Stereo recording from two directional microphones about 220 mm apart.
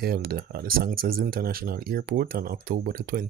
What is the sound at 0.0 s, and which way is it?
Speech, 45° right (ahead or behind).